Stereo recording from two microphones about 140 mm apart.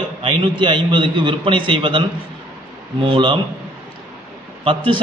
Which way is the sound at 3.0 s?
35° right (ahead or behind).